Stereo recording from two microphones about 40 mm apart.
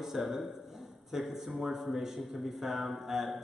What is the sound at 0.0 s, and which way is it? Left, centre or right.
A man's voice, centre.